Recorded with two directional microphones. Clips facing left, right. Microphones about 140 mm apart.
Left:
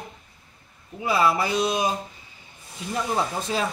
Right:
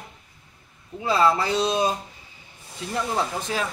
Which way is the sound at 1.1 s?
15° left (ahead or behind).